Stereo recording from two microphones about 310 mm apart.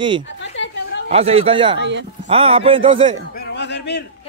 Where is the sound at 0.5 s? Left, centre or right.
Left.